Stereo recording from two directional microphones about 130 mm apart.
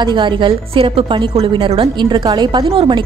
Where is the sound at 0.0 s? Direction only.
35° right (ahead or behind).